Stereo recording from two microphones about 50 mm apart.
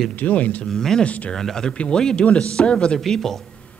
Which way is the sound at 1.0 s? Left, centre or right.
Left.